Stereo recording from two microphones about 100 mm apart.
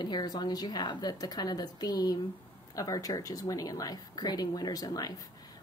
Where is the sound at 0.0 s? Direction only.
45° left (ahead or behind).